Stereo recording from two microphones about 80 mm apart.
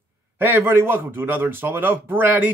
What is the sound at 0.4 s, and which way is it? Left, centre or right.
Speech, right.